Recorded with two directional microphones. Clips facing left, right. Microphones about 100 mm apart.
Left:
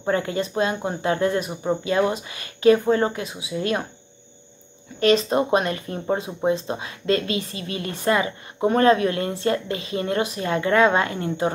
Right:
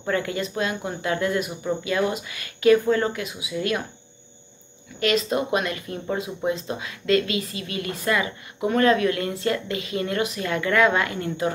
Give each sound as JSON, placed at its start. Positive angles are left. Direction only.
{"t": 0.0, "sound": "speech", "side_deg": 30}
{"t": 5.0, "sound": "speech", "side_deg": 30}